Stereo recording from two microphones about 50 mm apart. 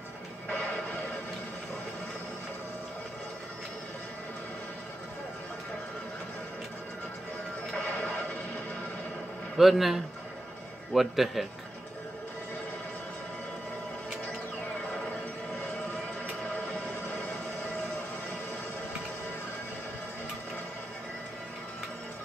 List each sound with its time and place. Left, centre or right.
0.5 s music: left
7.7 s neigh: left
9.6 s a man's voice: centre